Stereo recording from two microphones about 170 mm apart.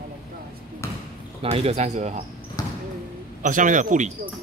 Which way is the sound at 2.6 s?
20° left (ahead or behind).